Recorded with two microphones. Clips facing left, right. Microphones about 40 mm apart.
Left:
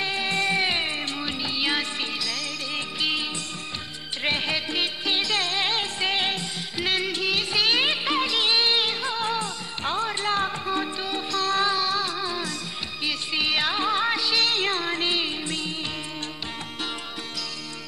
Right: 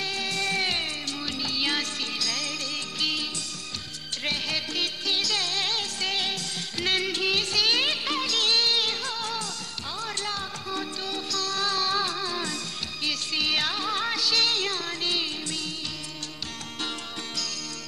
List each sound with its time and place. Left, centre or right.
0.0 s music: left
6.8 s music: centre
7.5 s music of bollywood: centre
10.7 s music: left
11.7 s music: centre
14.6 s music: left